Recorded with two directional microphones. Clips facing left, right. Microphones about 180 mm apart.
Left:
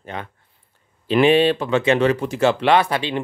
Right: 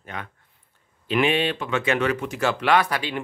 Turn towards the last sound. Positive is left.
turn(degrees=25)  # may be behind; listen again after turning